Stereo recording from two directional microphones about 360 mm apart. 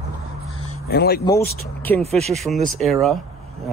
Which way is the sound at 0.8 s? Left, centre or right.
Left.